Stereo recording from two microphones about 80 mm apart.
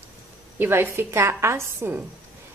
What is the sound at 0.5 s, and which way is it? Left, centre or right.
A woman's voice, right.